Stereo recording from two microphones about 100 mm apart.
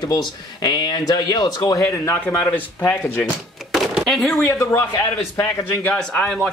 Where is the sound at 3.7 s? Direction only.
Centre (ahead or behind).